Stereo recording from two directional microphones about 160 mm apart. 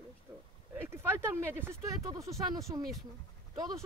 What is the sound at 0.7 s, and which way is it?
Speech, 15° right (ahead or behind).